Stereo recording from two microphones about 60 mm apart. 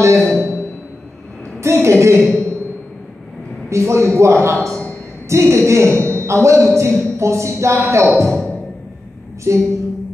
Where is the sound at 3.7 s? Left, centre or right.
Right.